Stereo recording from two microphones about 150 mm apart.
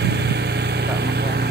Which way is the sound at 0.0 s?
90° right.